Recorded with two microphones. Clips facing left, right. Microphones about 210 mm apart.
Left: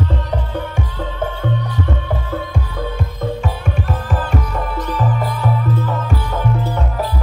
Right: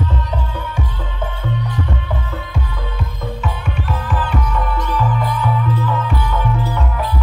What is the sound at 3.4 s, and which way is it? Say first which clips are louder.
Music: left 2 dB; 40° left (ahead or behind).